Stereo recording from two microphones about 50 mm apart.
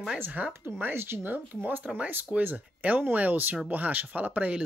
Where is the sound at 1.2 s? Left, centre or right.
Right.